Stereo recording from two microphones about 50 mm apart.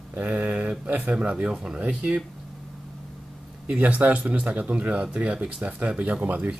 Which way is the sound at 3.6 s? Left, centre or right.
Right.